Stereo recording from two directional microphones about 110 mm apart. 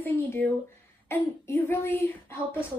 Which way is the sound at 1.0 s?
20° left (ahead or behind).